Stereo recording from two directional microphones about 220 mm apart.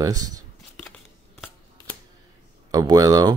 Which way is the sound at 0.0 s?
15° right (ahead or behind).